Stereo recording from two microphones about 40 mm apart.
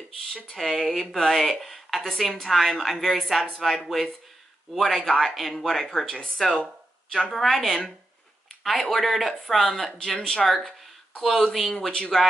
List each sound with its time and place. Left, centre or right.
0.6 s a woman's voice: centre
9.9 s speech: centre
10.4 s a woman's voice: centre